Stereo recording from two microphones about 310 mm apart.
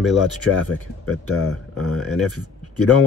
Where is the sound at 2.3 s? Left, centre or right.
Left.